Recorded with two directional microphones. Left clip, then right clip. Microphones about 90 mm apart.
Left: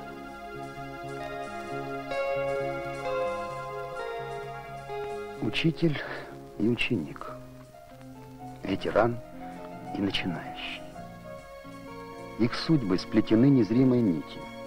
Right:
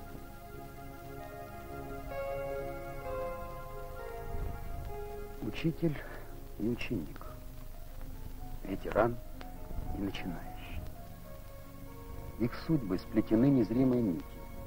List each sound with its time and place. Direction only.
0.6 s music: 30° left (ahead or behind)
6.7 s speech: 25° left (ahead or behind)
8.6 s speech: 25° left (ahead or behind)
12.4 s speech: 15° left (ahead or behind)